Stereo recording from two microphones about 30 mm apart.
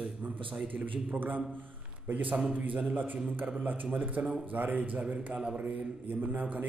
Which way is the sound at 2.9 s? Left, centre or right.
Right.